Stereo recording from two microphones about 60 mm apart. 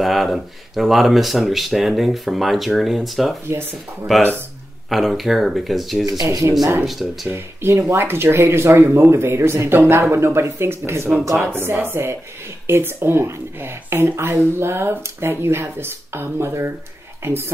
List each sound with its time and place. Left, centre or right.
0.0 s speech: centre
6.0 s speech: right
6.8 s speech: centre
7.2 s speech: right